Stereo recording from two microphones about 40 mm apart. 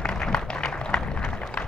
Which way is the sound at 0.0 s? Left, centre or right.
Centre.